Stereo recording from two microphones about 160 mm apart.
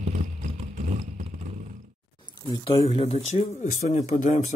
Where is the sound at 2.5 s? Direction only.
35° left (ahead or behind).